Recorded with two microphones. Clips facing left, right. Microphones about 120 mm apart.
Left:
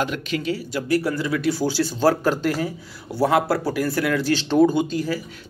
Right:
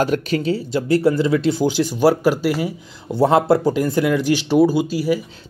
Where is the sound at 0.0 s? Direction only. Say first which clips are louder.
Right 6 dB; 40° right (ahead or behind); by 2.7 s 10° right (ahead or behind).